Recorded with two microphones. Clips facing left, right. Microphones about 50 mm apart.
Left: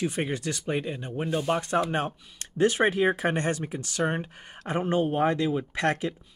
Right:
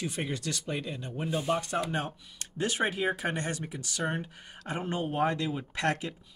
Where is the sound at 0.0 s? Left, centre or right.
Left.